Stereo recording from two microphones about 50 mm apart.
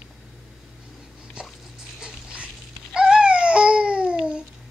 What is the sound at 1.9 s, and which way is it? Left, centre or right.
Babbling, centre.